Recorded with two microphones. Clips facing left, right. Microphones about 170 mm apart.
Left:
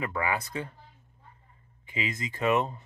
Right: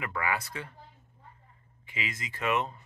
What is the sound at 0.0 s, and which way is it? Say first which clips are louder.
Speech: left 2 dB; 20° left (ahead or behind).